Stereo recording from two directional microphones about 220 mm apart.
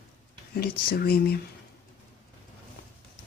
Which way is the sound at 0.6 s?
45° left (ahead or behind).